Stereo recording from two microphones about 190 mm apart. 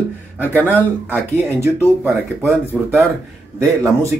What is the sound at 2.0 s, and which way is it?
Speech, 10° right (ahead or behind).